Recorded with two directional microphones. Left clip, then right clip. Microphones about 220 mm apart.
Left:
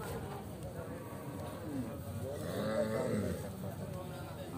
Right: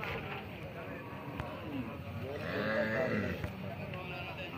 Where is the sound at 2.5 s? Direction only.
30° left (ahead or behind).